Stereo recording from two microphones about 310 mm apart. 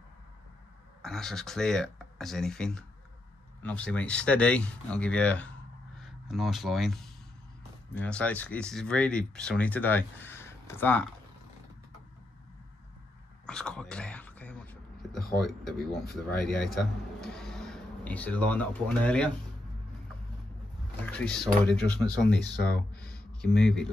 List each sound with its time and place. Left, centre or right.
1.0 s speech: centre
13.5 s a sound: centre
15.9 s speech: left
16.3 s speech: centre
21.0 s speech: centre